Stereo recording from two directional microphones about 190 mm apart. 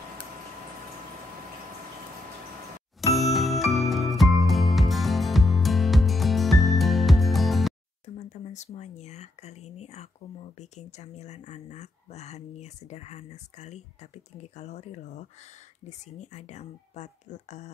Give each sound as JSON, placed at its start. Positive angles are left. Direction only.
{"t": 3.1, "sound": "jingle", "side_deg": 0}
{"t": 3.7, "sound": "music", "side_deg": 0}
{"t": 8.2, "sound": "speech", "side_deg": 40}